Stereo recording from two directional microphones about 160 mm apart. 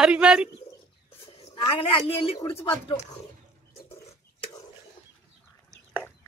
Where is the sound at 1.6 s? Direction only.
35° left (ahead or behind).